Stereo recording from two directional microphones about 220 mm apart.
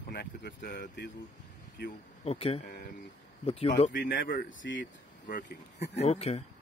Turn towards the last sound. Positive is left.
turn(degrees=25)  # may be behind; listen again after turning